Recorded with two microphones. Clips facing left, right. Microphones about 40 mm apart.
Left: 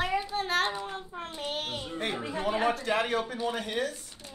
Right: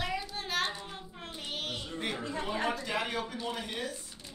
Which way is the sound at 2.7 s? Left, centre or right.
Left.